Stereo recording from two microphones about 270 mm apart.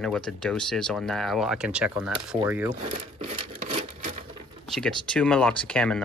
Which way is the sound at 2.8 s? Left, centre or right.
Right.